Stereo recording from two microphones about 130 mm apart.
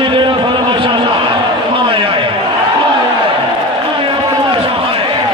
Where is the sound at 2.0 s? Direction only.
40° right (ahead or behind).